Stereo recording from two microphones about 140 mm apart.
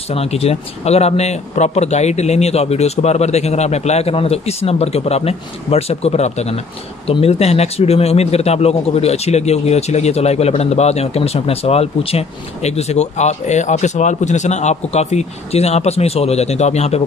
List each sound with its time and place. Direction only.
0.1 s speech: 45° left (ahead or behind)